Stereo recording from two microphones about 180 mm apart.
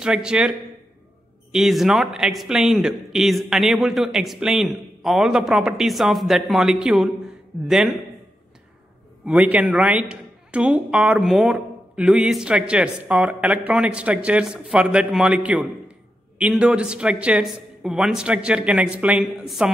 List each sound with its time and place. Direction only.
0.0 s a man's voice: 5° right (ahead or behind)
9.2 s a man's voice: 5° right (ahead or behind)